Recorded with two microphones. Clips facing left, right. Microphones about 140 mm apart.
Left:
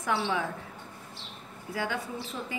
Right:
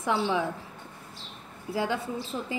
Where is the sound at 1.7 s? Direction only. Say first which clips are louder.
Right 4 dB; 30° right (ahead or behind).